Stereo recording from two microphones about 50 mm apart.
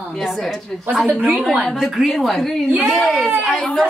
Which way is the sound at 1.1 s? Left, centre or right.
Right.